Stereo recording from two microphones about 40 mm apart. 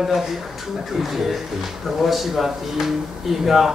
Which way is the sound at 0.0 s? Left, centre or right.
Centre.